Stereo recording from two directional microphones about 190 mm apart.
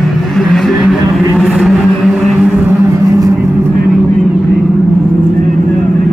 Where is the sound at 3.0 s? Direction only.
20° right (ahead or behind).